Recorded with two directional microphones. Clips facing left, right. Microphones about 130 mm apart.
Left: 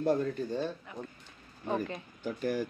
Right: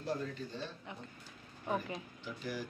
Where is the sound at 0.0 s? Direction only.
50° left (ahead or behind).